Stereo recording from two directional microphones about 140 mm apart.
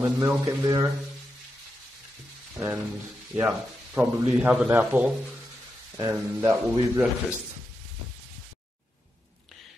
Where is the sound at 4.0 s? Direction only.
15° right (ahead or behind).